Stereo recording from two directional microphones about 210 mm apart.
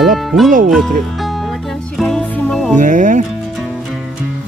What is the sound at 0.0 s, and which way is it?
Music, centre (ahead or behind).